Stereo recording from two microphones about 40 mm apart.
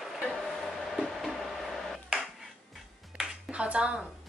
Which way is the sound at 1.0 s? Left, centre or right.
Centre.